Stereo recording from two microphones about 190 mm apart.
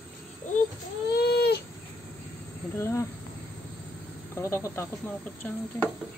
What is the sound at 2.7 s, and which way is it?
Speech, 15° left (ahead or behind).